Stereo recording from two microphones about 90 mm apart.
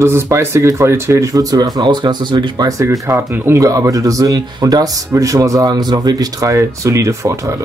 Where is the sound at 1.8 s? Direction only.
55° right (ahead or behind).